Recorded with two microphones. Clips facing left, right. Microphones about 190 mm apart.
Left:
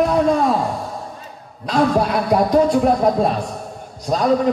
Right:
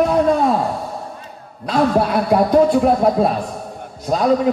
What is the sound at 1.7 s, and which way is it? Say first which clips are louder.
A man's voice: right 1 dB; centre (ahead or behind).